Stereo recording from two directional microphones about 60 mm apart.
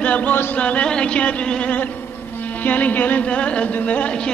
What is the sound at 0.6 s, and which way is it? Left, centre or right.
Speech, left.